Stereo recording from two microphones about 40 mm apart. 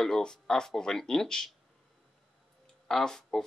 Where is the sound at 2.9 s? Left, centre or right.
Centre.